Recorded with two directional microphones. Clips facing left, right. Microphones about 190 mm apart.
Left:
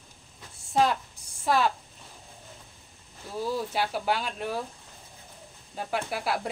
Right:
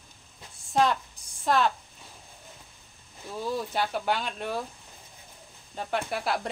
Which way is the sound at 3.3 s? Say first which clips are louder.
Left 1 dB; 5° left (ahead or behind).